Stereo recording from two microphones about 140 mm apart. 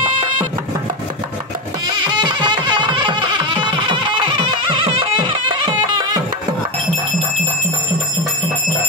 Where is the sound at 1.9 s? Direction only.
30° right (ahead or behind).